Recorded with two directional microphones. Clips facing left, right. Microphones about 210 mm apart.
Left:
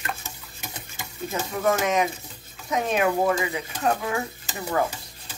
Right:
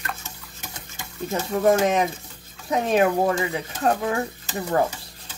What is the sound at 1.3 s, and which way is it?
Speech, 35° right (ahead or behind).